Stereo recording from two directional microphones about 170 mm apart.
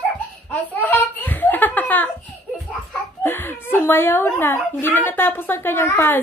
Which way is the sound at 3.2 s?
15° left (ahead or behind).